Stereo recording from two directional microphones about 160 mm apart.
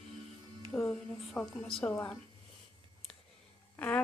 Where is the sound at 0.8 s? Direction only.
5° left (ahead or behind).